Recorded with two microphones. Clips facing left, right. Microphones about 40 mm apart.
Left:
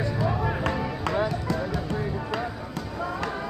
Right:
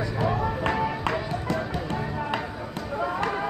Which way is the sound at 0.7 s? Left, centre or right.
Centre.